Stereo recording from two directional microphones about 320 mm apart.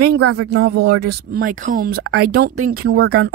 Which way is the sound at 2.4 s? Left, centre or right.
Right.